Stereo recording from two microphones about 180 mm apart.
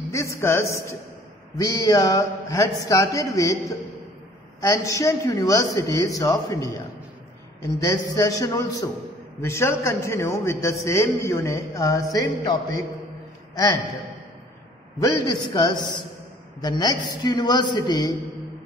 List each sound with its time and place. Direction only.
0.1 s a man's voice: 15° left (ahead or behind)
4.6 s a man's voice: 20° left (ahead or behind)
15.0 s a man's voice: 20° left (ahead or behind)